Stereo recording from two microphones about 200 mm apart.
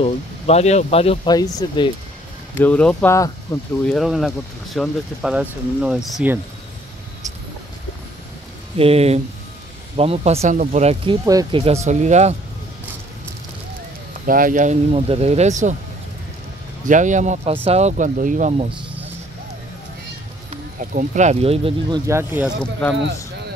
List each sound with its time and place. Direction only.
0.0 s speech: 30° left (ahead or behind)
2.6 s speech: 5° left (ahead or behind)
3.8 s speech: centre (ahead or behind)
8.7 s speech: 30° right (ahead or behind)
11.2 s speech: 15° right (ahead or behind)
11.6 s speech: 35° right (ahead or behind)
14.2 s speech: 45° right (ahead or behind)
16.8 s speech: 40° right (ahead or behind)
20.4 s speech: 40° right (ahead or behind)
22.0 s speech: 10° right (ahead or behind)
22.6 s speech: 5° left (ahead or behind)